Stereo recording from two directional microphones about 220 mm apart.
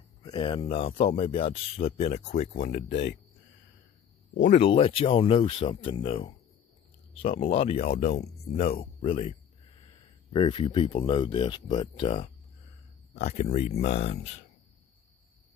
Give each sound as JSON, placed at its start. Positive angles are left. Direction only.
{"t": 0.2, "sound": "speech", "side_deg": 20}
{"t": 4.4, "sound": "speech", "side_deg": 30}